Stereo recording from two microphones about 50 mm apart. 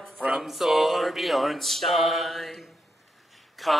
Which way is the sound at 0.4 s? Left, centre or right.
Centre.